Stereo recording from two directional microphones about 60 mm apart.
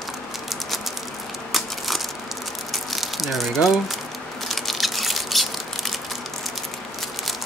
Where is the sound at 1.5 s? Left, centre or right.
Centre.